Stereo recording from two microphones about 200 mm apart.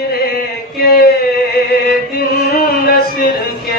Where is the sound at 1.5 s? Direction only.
50° left (ahead or behind).